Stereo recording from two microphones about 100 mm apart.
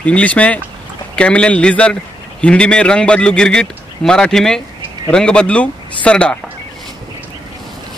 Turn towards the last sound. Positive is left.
turn(degrees=10)  # may be behind; listen again after turning